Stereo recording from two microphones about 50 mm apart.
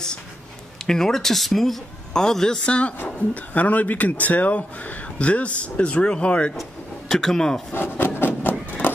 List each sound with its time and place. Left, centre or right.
0.8 s speech: centre
2.1 s speech: centre
2.6 s speech: left
6.5 s vehicle: centre
7.2 s speech: centre
7.7 s rub: left
8.8 s run: left